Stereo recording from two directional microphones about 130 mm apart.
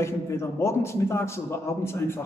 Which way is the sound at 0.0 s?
20° left (ahead or behind).